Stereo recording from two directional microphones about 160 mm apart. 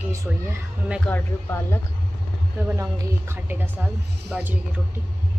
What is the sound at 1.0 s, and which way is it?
Speech, 15° left (ahead or behind).